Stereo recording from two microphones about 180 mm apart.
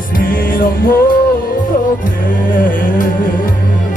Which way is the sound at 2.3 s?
50° left (ahead or behind).